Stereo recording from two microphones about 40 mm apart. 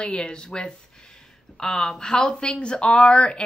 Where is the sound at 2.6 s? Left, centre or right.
Left.